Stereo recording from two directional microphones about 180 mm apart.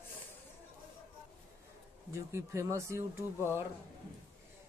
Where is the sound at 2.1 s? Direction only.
15° right (ahead or behind).